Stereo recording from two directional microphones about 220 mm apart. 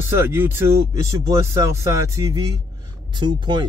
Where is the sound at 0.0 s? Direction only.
10° right (ahead or behind).